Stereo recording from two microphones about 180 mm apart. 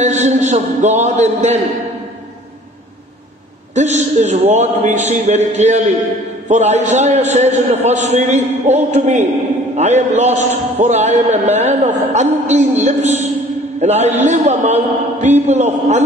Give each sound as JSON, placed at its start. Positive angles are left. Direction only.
{"t": 0.0, "sound": "a man's voice", "side_deg": -40}
{"t": 3.7, "sound": "a man's voice", "side_deg": -40}